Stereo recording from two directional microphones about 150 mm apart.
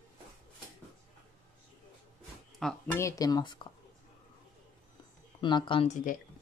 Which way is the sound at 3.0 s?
20° left (ahead or behind).